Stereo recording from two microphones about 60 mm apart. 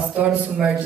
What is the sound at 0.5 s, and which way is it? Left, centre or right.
Speech, centre.